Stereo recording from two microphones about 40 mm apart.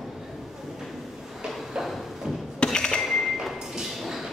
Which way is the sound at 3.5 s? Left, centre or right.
Centre.